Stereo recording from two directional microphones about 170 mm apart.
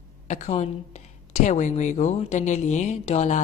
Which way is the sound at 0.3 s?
40° left (ahead or behind).